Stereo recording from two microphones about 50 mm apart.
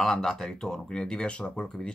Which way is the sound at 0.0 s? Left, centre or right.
Centre.